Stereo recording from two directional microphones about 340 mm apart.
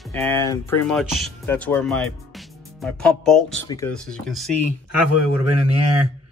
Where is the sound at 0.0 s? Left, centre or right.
Centre.